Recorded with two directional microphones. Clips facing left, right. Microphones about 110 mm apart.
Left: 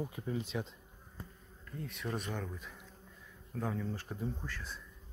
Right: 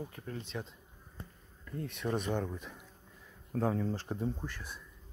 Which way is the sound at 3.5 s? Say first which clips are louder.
Right 6 dB; 40° right (ahead or behind).